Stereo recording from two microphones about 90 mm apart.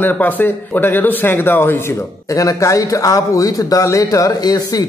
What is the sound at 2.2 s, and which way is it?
A man's voice, 40° left (ahead or behind).